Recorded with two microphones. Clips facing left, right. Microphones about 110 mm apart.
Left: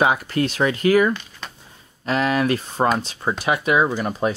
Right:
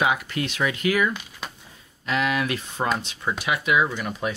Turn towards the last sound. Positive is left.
turn(degrees=35)  # may be behind; listen again after turning